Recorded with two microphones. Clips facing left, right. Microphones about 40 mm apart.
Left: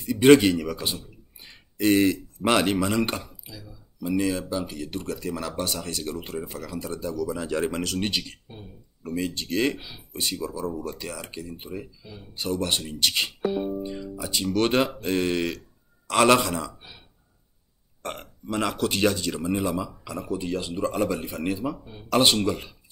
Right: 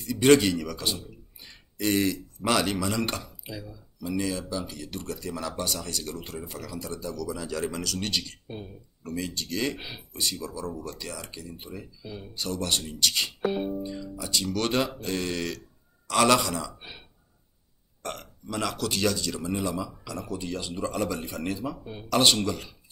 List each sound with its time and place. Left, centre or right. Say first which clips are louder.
0.0 s speech: left 4 dB; centre
3.0 s speech: left 3 dB; centre
4.4 s speech: left 4 dB; left
8.0 s speech: left 3 dB; centre
8.5 s speech: right 5 dB; right
9.0 s speech: left 4 dB; left
9.8 s speech: right 3 dB; right
10.1 s speech: left 3 dB; centre
18.0 s speech: left 2 dB; left